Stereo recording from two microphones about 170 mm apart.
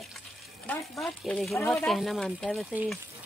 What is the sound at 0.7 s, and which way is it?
Speech, 10° left (ahead or behind).